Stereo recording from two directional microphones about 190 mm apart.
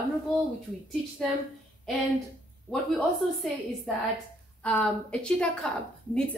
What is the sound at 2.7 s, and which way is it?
Speech, 5° left (ahead or behind).